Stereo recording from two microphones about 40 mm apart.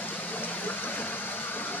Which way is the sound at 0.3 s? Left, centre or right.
Left.